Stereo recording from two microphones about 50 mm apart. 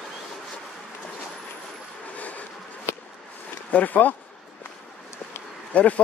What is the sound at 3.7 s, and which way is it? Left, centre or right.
Speech, left.